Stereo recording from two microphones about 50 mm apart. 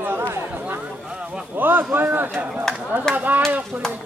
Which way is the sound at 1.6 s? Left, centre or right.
Right.